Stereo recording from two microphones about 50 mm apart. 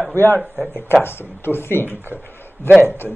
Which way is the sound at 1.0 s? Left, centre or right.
Left.